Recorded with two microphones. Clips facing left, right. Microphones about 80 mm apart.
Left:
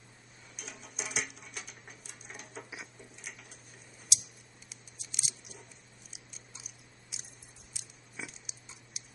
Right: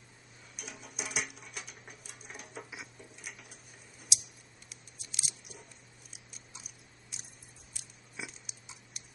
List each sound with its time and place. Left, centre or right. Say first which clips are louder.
0.6 s rodents: right 1 dB; centre
4.6 s a sound: even; centre
6.1 s biting: right 1 dB; centre